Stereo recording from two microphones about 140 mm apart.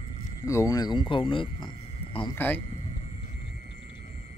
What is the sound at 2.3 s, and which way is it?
Speech, 15° left (ahead or behind).